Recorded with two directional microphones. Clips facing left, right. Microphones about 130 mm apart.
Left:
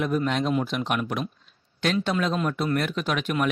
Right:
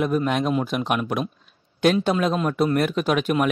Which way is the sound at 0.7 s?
50° right (ahead or behind).